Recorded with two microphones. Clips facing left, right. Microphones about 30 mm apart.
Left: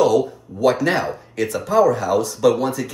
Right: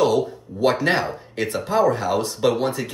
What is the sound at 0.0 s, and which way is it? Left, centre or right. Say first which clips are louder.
Speech: left 3 dB; right.